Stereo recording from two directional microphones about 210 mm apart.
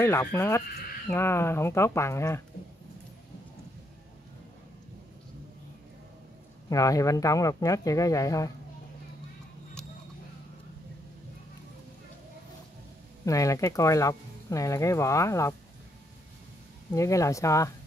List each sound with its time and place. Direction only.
0.0 s speech: 10° left (ahead or behind)
6.7 s speech: 15° left (ahead or behind)
13.2 s speech: 15° left (ahead or behind)
16.9 s speech: 15° left (ahead or behind)